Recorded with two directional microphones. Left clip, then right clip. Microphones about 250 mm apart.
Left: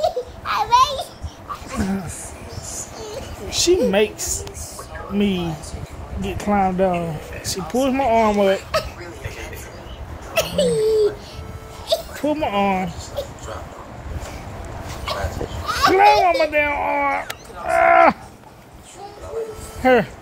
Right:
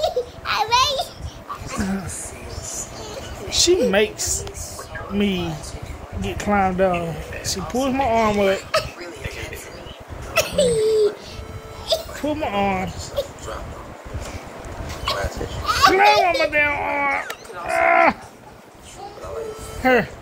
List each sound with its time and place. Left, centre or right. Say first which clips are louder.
0.0 s crying: left 1 dB; right
3.4 s a sound: even; centre
3.9 s speech: even; centre
7.5 s speech: left 2 dB; centre
9.0 s a sound: right 1 dB; centre
12.2 s speech: left 2 dB; centre
13.1 s a sound: right 2 dB; centre
15.0 s goat: right 2 dB; right
15.9 s speech: left 4 dB; centre
19.8 s speech: left 2 dB; centre